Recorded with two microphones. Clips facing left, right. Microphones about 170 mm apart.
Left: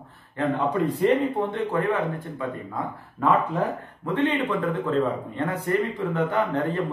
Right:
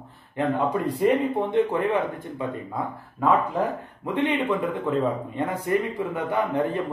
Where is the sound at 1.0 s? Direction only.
15° right (ahead or behind).